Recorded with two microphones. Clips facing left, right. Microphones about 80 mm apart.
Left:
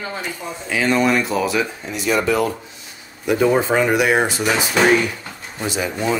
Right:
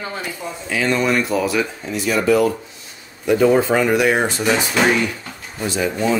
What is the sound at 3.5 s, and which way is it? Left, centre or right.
Speech, left.